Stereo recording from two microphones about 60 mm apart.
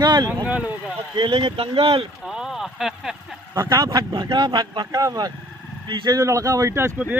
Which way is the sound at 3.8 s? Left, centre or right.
Right.